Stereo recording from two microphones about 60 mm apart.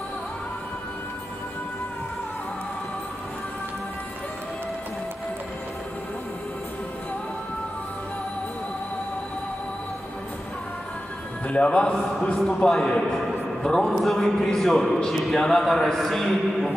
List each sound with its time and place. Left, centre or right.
11.4 s speech: centre
11.9 s a man's voice: centre